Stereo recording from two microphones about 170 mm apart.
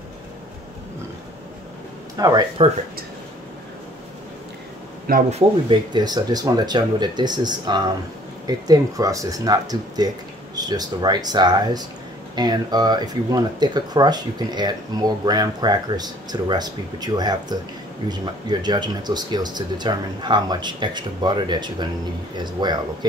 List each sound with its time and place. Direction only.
2.1 s speech: 25° right (ahead or behind)
5.3 s speech: 25° right (ahead or behind)